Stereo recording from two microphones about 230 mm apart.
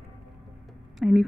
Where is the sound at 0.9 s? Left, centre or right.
Centre.